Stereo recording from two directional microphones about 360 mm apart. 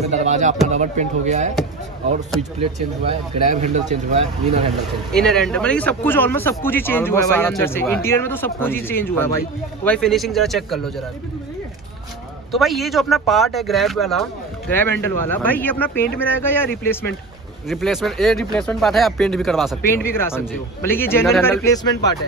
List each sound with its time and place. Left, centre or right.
0.1 s speech: centre
3.6 s speech: centre
5.1 s speech: centre
12.5 s speech: centre